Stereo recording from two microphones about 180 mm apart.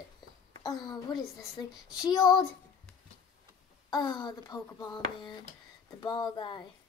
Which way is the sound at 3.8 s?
25° left (ahead or behind).